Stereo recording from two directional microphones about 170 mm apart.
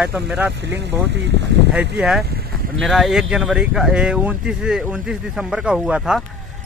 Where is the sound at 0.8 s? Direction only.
90° right.